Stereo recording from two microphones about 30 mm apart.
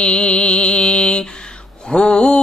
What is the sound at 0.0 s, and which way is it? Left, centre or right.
Mantra, left.